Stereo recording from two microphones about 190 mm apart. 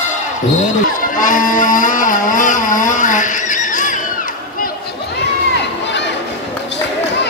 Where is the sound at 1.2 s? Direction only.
45° left (ahead or behind).